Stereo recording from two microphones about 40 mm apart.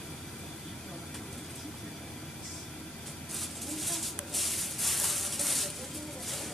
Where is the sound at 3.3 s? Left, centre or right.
Centre.